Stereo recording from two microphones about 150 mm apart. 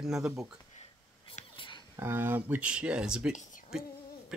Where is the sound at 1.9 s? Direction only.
15° right (ahead or behind).